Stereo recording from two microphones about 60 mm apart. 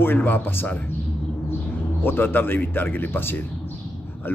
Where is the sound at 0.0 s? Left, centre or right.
Left.